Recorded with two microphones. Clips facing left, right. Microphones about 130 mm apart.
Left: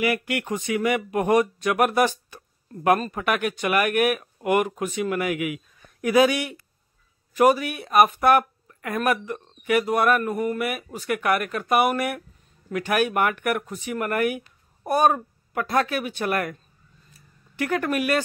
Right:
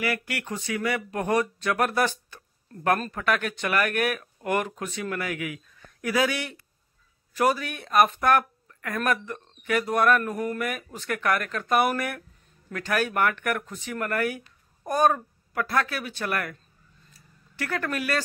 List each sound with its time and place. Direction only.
0.0 s speech: 20° left (ahead or behind)
17.6 s speech: 15° left (ahead or behind)